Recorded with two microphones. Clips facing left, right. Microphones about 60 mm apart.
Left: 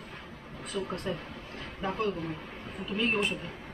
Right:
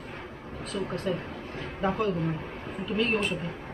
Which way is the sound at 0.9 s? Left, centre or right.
Centre.